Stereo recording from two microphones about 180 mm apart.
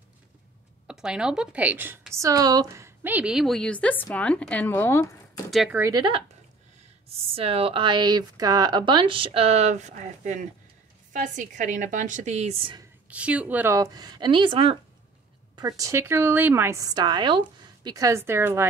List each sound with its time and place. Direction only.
0.8 s a woman's voice: 5° right (ahead or behind); by 5.1 s 15° left (ahead or behind)
5.5 s a woman's voice: centre (ahead or behind)
5.8 s a woman's voice: 20° right (ahead or behind)
13.1 s speech: 5° right (ahead or behind); by 14.8 s 30° right (ahead or behind)
15.5 s a woman's voice: 20° right (ahead or behind)